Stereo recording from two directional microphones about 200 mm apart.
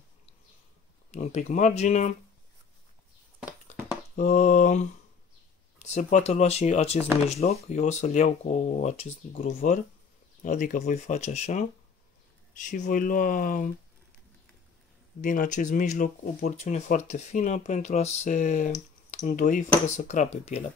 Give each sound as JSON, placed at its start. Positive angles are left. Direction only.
{"t": 1.1, "sound": "speech", "side_deg": 35}
{"t": 4.1, "sound": "speech", "side_deg": 35}
{"t": 15.2, "sound": "speech", "side_deg": 40}